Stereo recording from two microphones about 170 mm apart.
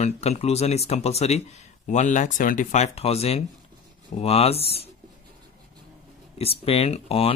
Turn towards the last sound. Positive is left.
turn(degrees=35)  # may be behind; listen again after turning